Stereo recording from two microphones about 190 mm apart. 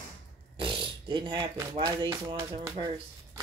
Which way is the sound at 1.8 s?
20° right (ahead or behind).